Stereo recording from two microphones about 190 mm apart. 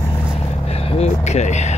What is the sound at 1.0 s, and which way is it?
Vehicle, 35° left (ahead or behind).